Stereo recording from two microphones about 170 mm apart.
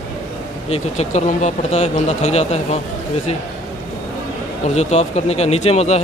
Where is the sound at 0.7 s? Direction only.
40° left (ahead or behind).